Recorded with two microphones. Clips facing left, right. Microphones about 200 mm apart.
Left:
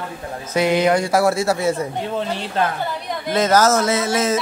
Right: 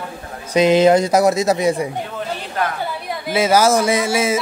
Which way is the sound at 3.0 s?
10° right (ahead or behind).